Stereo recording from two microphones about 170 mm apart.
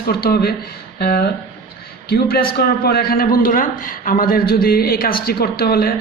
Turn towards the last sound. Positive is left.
turn(degrees=60)  # may be behind; listen again after turning